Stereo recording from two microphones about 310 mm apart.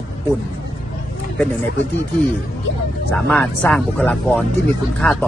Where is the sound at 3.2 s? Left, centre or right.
Centre.